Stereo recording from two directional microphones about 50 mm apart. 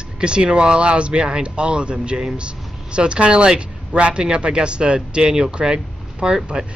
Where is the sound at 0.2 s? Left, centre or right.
Centre.